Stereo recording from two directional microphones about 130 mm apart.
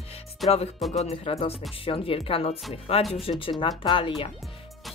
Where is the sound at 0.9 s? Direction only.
55° left (ahead or behind).